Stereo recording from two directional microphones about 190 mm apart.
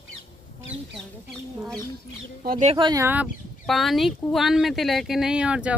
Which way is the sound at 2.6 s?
30° right (ahead or behind).